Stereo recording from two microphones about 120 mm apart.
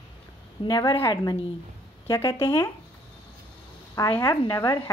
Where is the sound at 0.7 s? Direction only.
35° left (ahead or behind).